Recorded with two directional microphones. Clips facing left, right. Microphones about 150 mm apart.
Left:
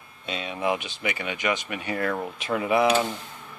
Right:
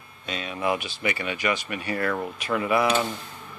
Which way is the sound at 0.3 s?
20° left (ahead or behind).